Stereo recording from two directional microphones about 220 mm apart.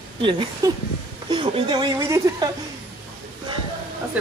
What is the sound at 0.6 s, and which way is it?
A woman's voice, 15° right (ahead or behind).